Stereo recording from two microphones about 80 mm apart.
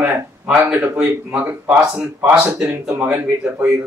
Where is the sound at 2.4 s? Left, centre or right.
Right.